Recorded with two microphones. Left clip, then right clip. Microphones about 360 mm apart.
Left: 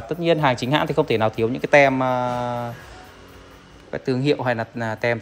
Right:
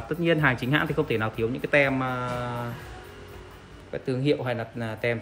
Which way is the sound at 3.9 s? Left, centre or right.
Left.